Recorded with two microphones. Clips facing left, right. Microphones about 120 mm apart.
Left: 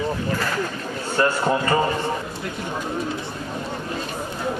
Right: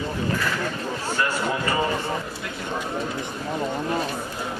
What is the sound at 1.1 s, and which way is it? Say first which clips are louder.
Speech: left 6 dB; 35° left (ahead or behind).